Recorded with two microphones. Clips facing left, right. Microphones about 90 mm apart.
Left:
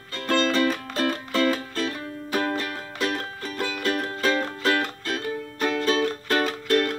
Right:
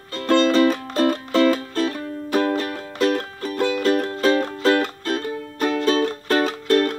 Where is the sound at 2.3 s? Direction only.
25° right (ahead or behind).